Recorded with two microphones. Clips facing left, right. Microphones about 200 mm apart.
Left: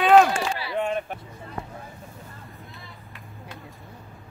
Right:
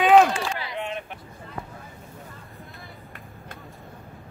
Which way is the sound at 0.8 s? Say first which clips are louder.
Left 6 dB; 45° left (ahead or behind).